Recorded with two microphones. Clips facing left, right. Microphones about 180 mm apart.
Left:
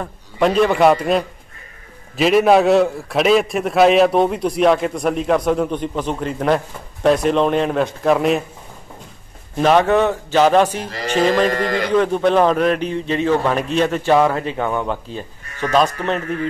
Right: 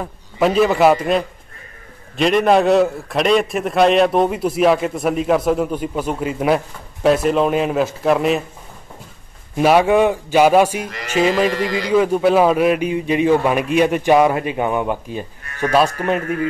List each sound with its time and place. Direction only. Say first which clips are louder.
0.0 s a man's voice: even; 5° right (ahead or behind)
9.6 s a man's voice: right 1 dB; 10° right (ahead or behind)
10.8 s speech: left 1 dB; 30° left (ahead or behind)
11.1 s a man's voice: even; 10° right (ahead or behind)
11.5 s a man's voice: left 1 dB; 50° left (ahead or behind)
11.9 s a man's voice: right 2 dB; 5° right (ahead or behind)